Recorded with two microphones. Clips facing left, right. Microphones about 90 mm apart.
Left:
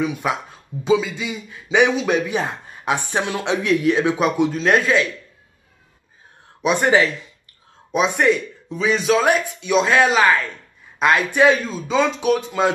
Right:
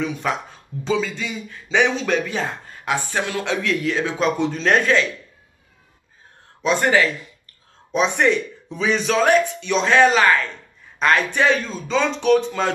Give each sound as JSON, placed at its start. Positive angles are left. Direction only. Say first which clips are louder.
{"t": 0.0, "sound": "speech", "louder": "left 2 dB", "side_deg": 10}
{"t": 6.6, "sound": "speech", "louder": "left 1 dB", "side_deg": 15}
{"t": 7.9, "sound": "speech", "louder": "left 1 dB", "side_deg": 5}